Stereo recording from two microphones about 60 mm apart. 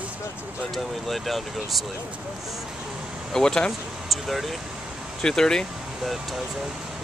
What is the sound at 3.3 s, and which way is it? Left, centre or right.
Speech, centre.